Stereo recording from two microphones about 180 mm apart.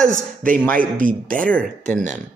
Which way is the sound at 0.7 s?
50° right (ahead or behind).